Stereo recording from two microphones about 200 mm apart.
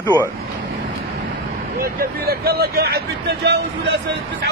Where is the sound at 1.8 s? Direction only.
50° right (ahead or behind).